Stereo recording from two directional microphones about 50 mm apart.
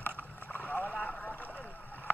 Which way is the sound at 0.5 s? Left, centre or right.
Left.